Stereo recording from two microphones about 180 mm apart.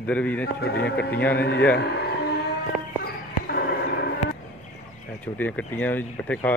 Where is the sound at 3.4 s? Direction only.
60° left (ahead or behind).